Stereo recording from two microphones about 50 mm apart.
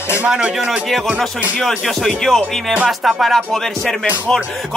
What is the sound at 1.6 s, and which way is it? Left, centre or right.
Speech, centre.